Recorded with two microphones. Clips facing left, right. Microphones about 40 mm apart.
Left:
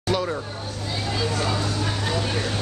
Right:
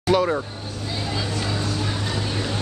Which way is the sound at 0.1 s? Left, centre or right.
Centre.